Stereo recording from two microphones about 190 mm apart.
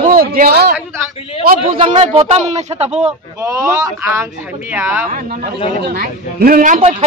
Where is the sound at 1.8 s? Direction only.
30° right (ahead or behind).